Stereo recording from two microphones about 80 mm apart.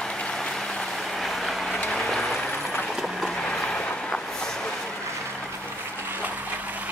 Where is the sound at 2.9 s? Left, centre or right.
Centre.